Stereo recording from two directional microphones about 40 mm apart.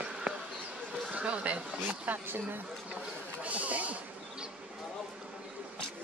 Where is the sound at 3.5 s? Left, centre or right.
Right.